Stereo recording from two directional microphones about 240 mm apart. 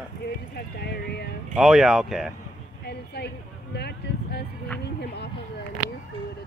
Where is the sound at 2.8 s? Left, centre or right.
Left.